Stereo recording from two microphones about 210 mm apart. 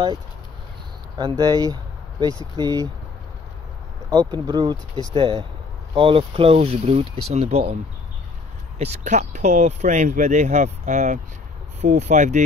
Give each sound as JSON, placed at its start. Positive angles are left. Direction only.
{"t": 1.1, "sound": "speech", "side_deg": -20}
{"t": 4.1, "sound": "speech", "side_deg": -20}
{"t": 8.7, "sound": "speech", "side_deg": -30}